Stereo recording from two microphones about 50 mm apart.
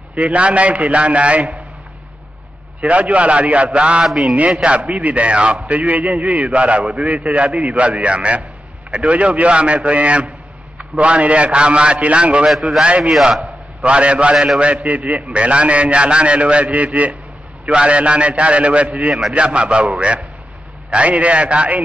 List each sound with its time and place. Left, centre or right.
0.1 s a man's voice: right
2.8 s a man's voice: right
4.0 s a man's voice: centre
4.6 s a man's voice: right
12.4 s a man's voice: centre
12.8 s a man's voice: right
13.3 s a sound: centre
13.8 s a man's voice: right